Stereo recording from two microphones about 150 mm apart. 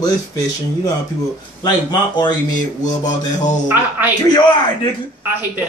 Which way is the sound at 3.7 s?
10° right (ahead or behind).